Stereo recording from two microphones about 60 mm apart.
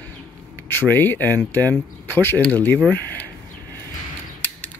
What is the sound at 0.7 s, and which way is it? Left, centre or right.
Speech, left.